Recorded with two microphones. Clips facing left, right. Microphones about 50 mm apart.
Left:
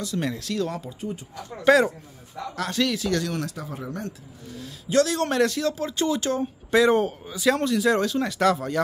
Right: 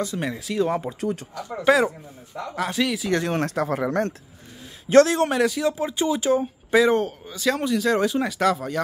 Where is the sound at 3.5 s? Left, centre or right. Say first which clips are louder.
Right 11 dB; right.